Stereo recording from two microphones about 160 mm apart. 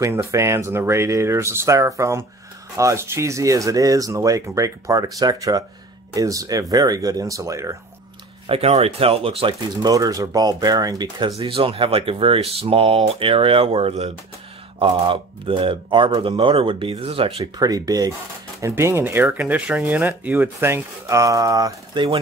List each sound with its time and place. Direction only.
0.0 s speech: 20° right (ahead or behind)
8.5 s speech: 40° right (ahead or behind)
17.6 s speech: 25° right (ahead or behind)